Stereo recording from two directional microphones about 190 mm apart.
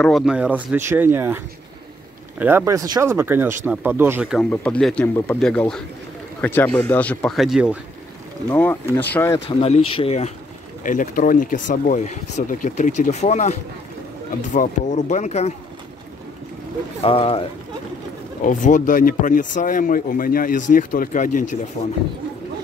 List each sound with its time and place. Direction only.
0.0 s a man's voice: centre (ahead or behind)
8.9 s speech: 15° left (ahead or behind)
9.6 s speech: 30° left (ahead or behind)
10.8 s speech: 45° left (ahead or behind)
17.0 s speech: 30° left (ahead or behind)
18.4 s speech: 40° left (ahead or behind)